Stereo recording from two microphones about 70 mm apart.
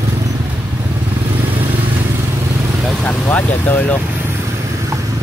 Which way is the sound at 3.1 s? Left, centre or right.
Left.